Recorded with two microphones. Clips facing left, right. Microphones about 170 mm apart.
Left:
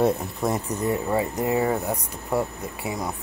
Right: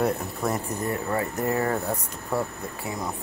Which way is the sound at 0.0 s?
20° left (ahead or behind).